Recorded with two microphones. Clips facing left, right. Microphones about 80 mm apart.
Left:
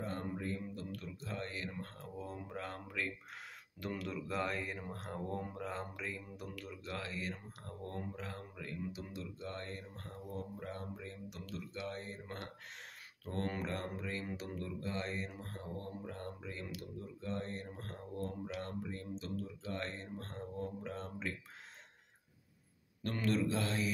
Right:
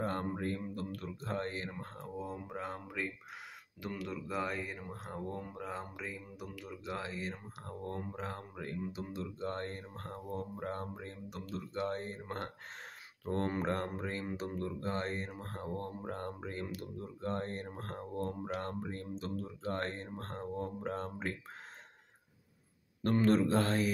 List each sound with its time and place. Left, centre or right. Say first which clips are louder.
0.0 s a sound: right 5 dB; right
2.3 s speech: right 3 dB; centre
3.8 s speech: even; centre
6.7 s speech: right 4 dB; right
23.2 s a man's voice: right 5 dB; right